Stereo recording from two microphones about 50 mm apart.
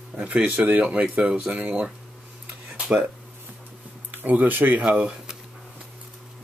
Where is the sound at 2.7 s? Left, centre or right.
Right.